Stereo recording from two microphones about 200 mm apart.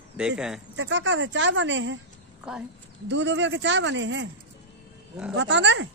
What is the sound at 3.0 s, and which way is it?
Speech, 60° right (ahead or behind).